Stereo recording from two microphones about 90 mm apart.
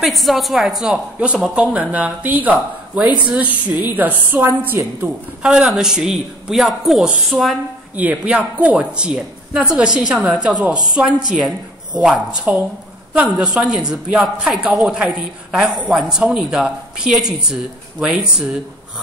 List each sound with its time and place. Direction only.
0.0 s a woman's voice: centre (ahead or behind); by 5.1 s 20° right (ahead or behind)
5.4 s speech: 10° right (ahead or behind)
7.2 s a woman's voice: centre (ahead or behind)
7.9 s speech: 15° right (ahead or behind)